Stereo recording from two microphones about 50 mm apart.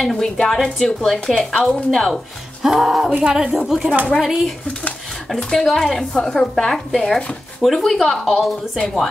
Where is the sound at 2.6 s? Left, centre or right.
Centre.